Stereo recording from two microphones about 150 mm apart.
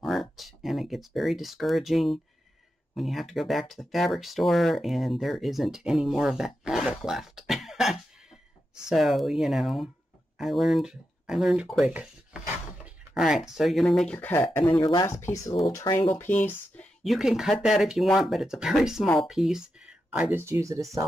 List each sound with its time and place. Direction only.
0.0 s speech: centre (ahead or behind)
14.8 s speech: 30° left (ahead or behind)
16.2 s speech: 15° left (ahead or behind)
17.0 s speech: centre (ahead or behind); by 20.8 s 20° right (ahead or behind)